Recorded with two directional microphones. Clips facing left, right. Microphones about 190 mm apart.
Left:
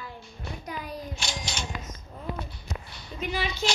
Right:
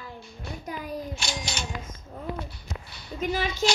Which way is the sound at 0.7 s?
50° right (ahead or behind).